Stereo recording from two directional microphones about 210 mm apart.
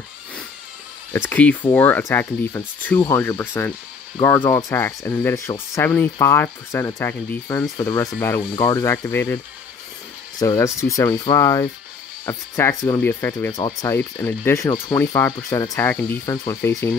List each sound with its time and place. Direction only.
1.3 s speech: 5° left (ahead or behind)
10.4 s speech: 15° left (ahead or behind)